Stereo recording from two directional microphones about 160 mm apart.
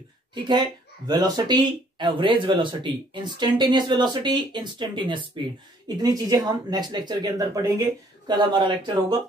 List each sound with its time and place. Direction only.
0.3 s speech: 25° right (ahead or behind)